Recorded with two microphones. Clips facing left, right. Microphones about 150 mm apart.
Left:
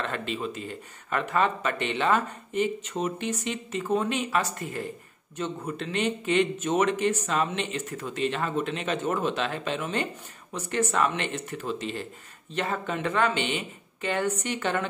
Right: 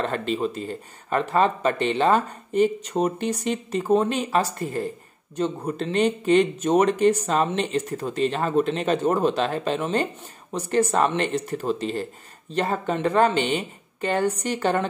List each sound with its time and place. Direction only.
0.0 s speech: 40° right (ahead or behind)